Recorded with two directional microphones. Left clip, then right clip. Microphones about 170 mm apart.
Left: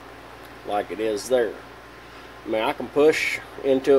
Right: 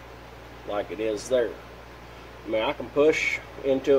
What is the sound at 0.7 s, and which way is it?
Speech, 40° left (ahead or behind).